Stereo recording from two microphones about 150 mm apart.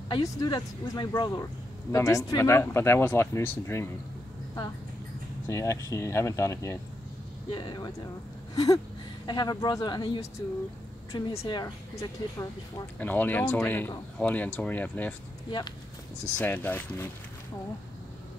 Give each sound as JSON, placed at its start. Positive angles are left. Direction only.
{"t": 0.1, "sound": "speech", "side_deg": 25}
{"t": 5.5, "sound": "speech", "side_deg": 20}
{"t": 7.5, "sound": "speech", "side_deg": 30}
{"t": 13.0, "sound": "speech", "side_deg": 10}
{"t": 16.3, "sound": "speech", "side_deg": 10}